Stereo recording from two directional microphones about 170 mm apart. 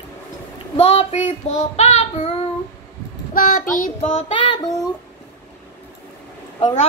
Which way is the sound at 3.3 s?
55° left (ahead or behind).